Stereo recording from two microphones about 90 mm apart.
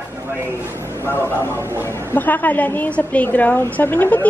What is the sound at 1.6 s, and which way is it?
Speech, 30° right (ahead or behind).